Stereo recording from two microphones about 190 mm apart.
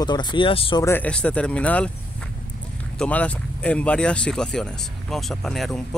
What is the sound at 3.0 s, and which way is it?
Speech, 5° left (ahead or behind).